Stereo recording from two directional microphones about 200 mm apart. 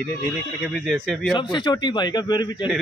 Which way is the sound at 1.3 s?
20° left (ahead or behind).